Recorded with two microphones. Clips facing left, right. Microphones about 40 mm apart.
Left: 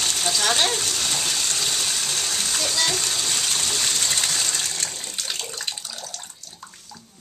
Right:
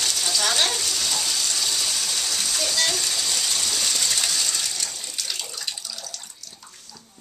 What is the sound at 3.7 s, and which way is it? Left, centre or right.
Bathtub, left.